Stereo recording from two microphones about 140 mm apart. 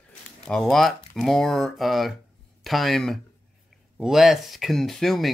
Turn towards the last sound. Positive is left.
turn(degrees=0)  # may be behind; listen again after turning